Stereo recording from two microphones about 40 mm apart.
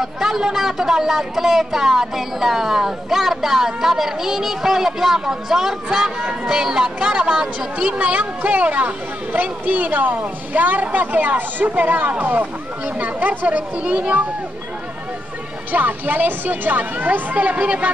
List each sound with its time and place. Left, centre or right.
0.0 s speech: centre
8.0 s speech: right
15.7 s speech: right